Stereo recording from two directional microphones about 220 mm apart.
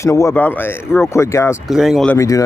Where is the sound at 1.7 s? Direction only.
Centre (ahead or behind).